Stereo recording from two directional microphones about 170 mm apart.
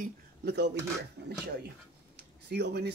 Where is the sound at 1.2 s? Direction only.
80° right.